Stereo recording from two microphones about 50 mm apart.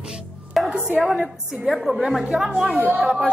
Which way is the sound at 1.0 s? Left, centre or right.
Centre.